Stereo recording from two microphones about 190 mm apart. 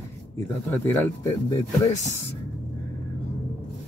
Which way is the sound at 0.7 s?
15° left (ahead or behind).